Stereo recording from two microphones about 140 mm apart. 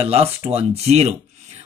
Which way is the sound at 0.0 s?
45° right (ahead or behind).